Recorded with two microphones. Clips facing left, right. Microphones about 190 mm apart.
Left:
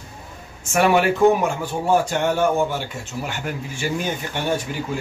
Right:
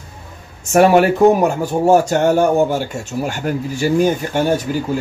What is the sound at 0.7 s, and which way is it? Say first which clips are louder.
Speech: right 6 dB; 40° right (ahead or behind).